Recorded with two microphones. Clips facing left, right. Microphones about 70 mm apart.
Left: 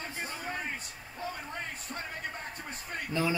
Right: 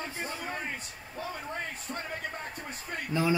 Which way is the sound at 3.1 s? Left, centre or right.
Centre.